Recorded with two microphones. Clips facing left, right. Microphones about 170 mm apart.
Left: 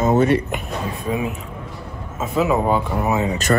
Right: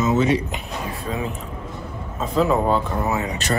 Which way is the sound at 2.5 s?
10° left (ahead or behind).